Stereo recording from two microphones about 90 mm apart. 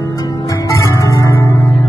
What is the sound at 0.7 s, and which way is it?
Music, 35° left (ahead or behind).